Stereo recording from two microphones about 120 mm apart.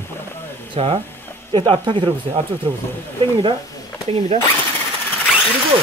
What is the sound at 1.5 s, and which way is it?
Speech, 40° right (ahead or behind).